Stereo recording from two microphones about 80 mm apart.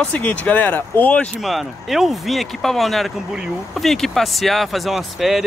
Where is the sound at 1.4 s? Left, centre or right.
Centre.